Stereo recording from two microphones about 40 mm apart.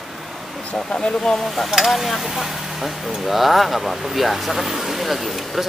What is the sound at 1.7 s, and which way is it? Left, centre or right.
Speech, centre.